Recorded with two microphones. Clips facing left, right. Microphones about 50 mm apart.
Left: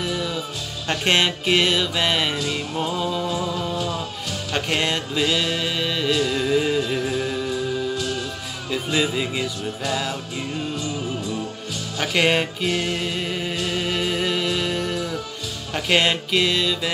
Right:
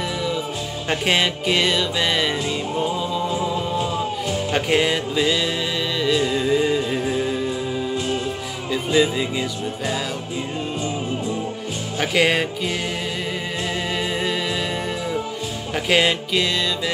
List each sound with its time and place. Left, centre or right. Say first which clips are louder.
1.0 s music: left 1 dB; centre
3.3 s music: right 2 dB; right
4.6 s music: right 3 dB; centre
6.5 s music: right 1 dB; centre
8.9 s music: right 4 dB; centre
12.0 s music: right 1 dB; centre
12.6 s music: left 1 dB; centre
14.7 s music: left 1 dB; centre
15.7 s music: right 1 dB; centre